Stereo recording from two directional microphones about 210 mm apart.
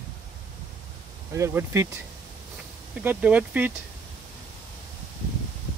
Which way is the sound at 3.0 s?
5° right (ahead or behind).